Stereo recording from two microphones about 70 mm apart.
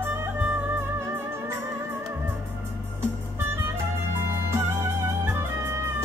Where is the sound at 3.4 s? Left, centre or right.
Right.